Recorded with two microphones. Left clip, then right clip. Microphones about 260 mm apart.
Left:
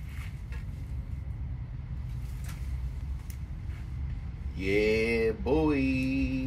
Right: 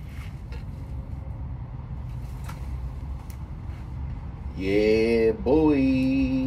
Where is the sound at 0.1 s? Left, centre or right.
Centre.